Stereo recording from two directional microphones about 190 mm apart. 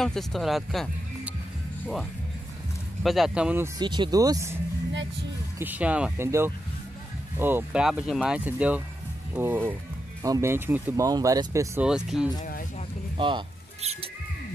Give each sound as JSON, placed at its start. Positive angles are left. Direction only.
{"t": 0.0, "sound": "speech", "side_deg": 0}
{"t": 3.0, "sound": "speech", "side_deg": 0}
{"t": 5.6, "sound": "speech", "side_deg": -10}
{"t": 11.8, "sound": "speech", "side_deg": -5}
{"t": 12.4, "sound": "a sound", "side_deg": 50}